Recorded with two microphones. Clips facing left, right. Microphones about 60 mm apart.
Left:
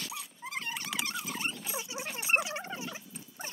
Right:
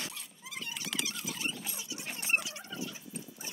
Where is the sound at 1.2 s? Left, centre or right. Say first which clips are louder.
Left 1 dB; left.